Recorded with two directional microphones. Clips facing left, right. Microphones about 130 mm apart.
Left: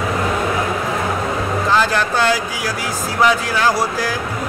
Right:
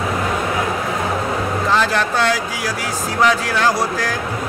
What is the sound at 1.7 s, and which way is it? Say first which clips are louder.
Speech: left 1 dB; centre (ahead or behind).